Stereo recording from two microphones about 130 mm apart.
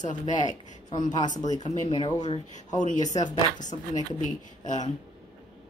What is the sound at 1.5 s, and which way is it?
Speech, 60° left (ahead or behind).